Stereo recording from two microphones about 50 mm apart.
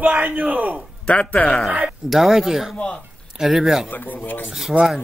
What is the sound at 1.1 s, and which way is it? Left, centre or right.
Speech, left.